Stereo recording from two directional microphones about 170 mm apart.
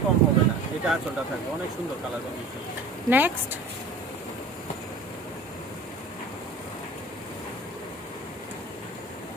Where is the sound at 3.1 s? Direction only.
10° right (ahead or behind).